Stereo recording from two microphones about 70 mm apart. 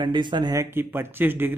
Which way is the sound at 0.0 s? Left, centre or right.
Right.